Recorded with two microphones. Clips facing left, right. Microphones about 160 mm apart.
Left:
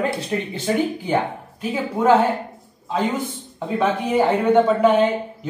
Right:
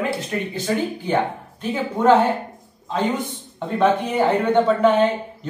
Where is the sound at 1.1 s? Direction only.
10° left (ahead or behind).